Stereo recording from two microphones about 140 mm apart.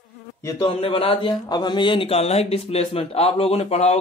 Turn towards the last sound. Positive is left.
turn(degrees=50)  # may be behind; listen again after turning